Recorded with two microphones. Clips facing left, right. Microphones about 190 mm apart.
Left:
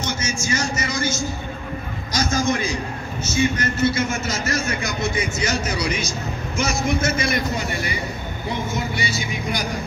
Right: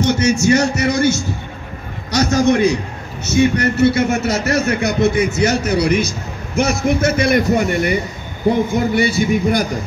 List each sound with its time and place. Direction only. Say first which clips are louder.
0.0 s a man's voice: right 12 dB; 65° right (ahead or behind)